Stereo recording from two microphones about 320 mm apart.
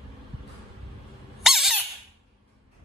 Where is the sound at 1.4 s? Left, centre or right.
Centre.